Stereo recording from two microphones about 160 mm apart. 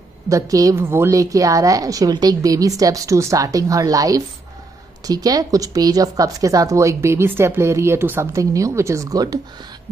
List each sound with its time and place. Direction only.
0.3 s a woman's voice: 20° right (ahead or behind)